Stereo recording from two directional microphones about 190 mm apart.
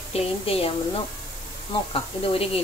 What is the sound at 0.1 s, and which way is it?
Speech, 30° left (ahead or behind).